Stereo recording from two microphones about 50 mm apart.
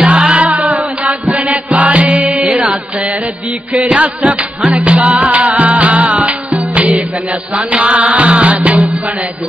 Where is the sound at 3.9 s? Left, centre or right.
Right.